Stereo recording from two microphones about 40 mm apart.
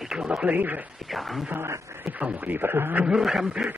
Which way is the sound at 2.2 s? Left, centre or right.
Right.